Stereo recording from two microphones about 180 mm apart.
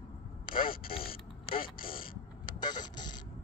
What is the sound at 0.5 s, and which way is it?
Speech, 50° left (ahead or behind).